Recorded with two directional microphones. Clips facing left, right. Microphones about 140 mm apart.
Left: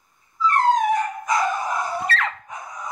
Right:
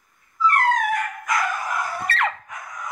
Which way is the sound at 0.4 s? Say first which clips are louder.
Left 2 dB; 25° left (ahead or behind).